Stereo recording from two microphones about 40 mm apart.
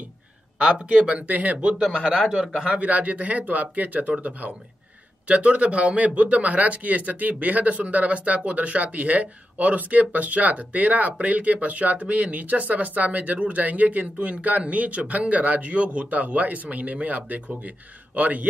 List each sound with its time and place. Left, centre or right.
0.7 s speech: right
2.5 s a man's voice: centre
2.8 s speech: right
5.3 s speech: right